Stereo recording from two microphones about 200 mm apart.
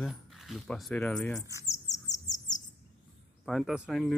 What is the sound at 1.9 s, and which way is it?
Bird, 35° left (ahead or behind).